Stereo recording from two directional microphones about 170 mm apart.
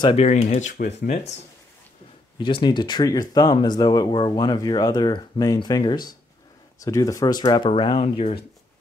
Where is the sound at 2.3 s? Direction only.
25° left (ahead or behind).